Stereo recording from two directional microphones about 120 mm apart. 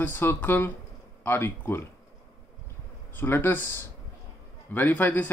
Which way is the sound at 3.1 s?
15° left (ahead or behind).